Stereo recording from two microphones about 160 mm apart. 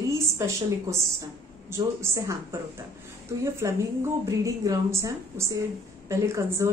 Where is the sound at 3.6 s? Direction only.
20° right (ahead or behind).